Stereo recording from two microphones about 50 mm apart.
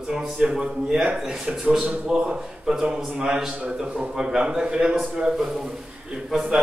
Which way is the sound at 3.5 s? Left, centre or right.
Right.